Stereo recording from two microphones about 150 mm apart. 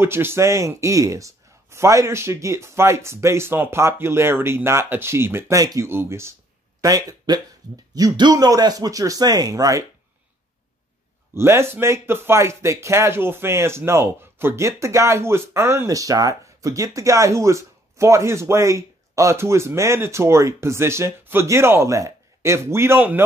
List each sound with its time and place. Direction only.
0.0 s a man's voice: 15° right (ahead or behind)
11.3 s speech: 15° right (ahead or behind)